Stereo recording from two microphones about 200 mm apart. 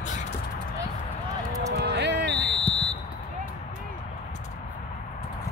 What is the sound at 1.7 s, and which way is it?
Music, 55° right (ahead or behind).